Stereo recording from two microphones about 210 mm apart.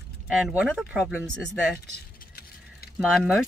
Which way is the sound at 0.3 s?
5° right (ahead or behind).